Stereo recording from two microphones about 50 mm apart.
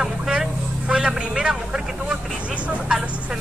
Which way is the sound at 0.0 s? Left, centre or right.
Centre.